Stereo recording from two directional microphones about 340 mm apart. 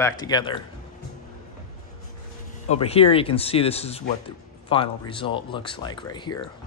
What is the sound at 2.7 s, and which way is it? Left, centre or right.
Speech, centre.